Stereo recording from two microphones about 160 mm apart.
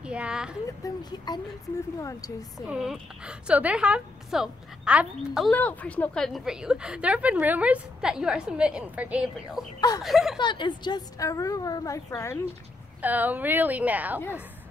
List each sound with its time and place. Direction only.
0.0 s speech: 5° right (ahead or behind)
0.8 s a woman's voice: 25° left (ahead or behind)
2.6 s a woman's voice: 5° right (ahead or behind)
5.5 s a woman's voice: 10° left (ahead or behind)
9.8 s a woman's voice: 25° left (ahead or behind)
10.0 s a woman's voice: centre (ahead or behind)
10.4 s a woman's voice: 30° left (ahead or behind)
13.0 s a woman's voice: 10° right (ahead or behind)